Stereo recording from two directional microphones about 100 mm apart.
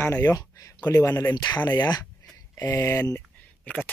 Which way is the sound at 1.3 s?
45° left (ahead or behind).